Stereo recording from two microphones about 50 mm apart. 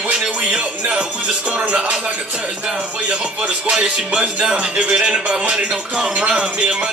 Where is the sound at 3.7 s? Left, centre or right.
Centre.